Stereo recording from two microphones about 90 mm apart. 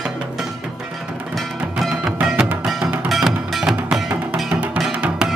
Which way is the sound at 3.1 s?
5° right (ahead or behind).